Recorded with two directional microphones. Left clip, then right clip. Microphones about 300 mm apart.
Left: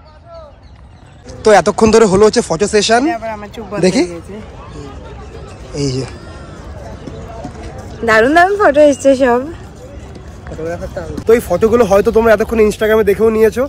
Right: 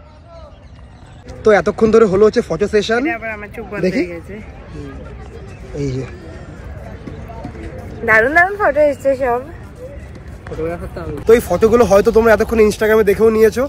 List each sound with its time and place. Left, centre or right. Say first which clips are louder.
1.4 s speech: left 3 dB; centre
3.1 s speech: left 3 dB; left
5.8 s speech: left 4 dB; centre
8.0 s speech: left 2 dB; left
11.2 s speech: even; centre